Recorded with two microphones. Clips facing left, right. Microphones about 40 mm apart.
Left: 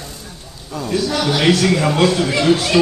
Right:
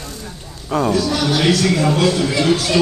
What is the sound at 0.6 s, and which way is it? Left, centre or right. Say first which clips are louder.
Speech: right 9 dB; right.